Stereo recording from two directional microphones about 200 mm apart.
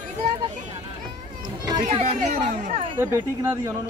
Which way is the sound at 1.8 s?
35° right (ahead or behind).